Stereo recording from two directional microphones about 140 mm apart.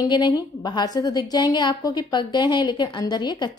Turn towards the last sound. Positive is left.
turn(degrees=30)  # may be behind; listen again after turning